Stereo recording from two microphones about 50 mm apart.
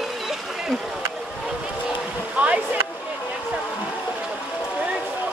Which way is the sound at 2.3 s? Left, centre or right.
Right.